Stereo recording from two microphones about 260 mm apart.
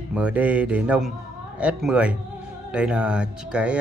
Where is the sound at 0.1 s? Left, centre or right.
Centre.